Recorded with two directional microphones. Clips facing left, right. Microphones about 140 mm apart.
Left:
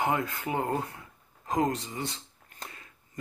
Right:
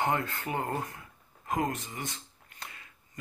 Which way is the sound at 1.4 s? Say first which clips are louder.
Left 3 dB; 35° left (ahead or behind).